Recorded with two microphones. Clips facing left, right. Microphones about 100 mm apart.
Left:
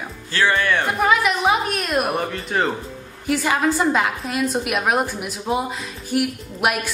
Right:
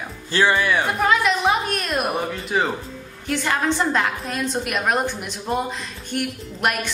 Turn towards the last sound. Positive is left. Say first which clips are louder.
# left 2 dB
turn(degrees=5)  # may be behind; listen again after turning